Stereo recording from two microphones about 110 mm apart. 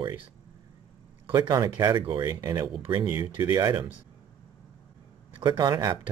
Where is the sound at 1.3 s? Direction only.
40° right (ahead or behind).